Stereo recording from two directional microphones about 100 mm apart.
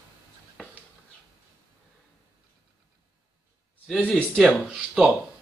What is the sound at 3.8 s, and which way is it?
Speech, 5° left (ahead or behind).